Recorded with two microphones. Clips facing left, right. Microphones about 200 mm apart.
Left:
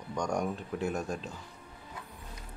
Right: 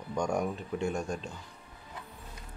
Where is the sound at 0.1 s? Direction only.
5° right (ahead or behind).